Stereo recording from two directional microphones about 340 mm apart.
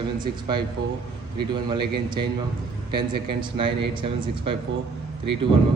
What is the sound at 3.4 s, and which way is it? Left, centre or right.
A man's voice, centre.